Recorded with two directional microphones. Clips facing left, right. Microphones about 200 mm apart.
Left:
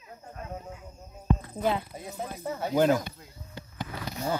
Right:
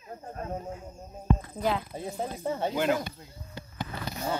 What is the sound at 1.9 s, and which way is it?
Speech, 30° right (ahead or behind).